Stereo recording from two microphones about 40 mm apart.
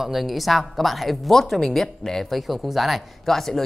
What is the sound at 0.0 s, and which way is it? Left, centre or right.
A man's voice, centre.